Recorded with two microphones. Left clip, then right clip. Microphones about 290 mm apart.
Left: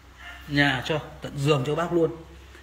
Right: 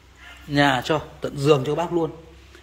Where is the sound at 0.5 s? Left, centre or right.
Centre.